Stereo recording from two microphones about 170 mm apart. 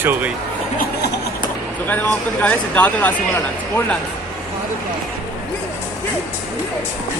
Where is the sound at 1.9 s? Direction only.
10° left (ahead or behind).